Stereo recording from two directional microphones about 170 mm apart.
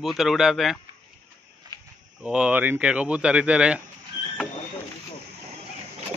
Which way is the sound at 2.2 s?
5° right (ahead or behind).